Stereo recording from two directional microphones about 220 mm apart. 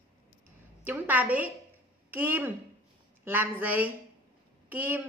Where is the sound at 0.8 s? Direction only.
10° right (ahead or behind).